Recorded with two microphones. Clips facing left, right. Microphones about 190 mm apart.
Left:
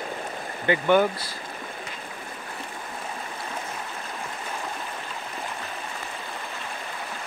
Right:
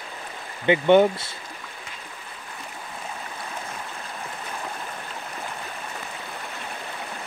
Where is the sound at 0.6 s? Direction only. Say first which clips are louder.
Right 4 dB; 20° right (ahead or behind).